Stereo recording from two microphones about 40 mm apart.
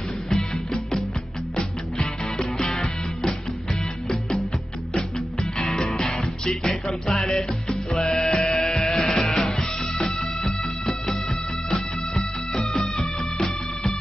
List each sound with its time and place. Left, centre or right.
2.0 s music: centre
5.6 s music: centre
12.5 s music: centre